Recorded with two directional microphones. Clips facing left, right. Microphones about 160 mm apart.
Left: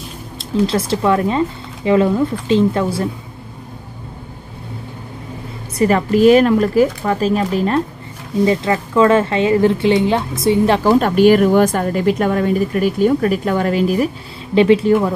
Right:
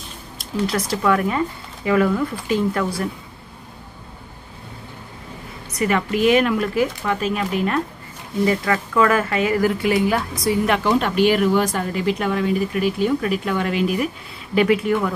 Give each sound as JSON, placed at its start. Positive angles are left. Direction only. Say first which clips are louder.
{"t": 0.7, "sound": "a woman's voice", "louder": "left 1 dB", "side_deg": 25}
{"t": 5.7, "sound": "a woman's voice", "louder": "left 6 dB", "side_deg": 35}